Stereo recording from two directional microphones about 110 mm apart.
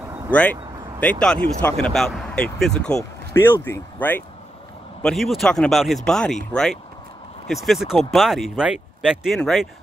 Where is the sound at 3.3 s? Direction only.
20° left (ahead or behind).